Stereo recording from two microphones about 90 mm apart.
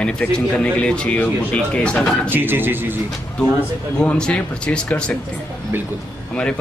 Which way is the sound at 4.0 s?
10° left (ahead or behind).